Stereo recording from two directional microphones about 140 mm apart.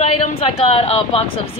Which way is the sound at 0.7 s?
45° left (ahead or behind).